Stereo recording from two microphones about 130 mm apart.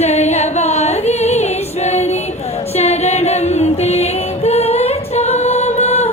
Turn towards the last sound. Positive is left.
turn(degrees=55)  # may be behind; listen again after turning